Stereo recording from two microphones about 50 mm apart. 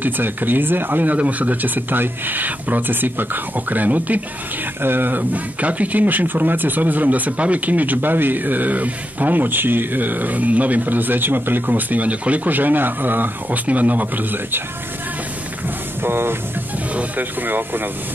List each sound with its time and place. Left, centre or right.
0.0 s speech: right
16.0 s speech: right
16.9 s speech: right